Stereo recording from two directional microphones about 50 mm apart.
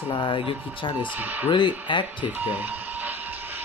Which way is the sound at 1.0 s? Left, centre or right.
Right.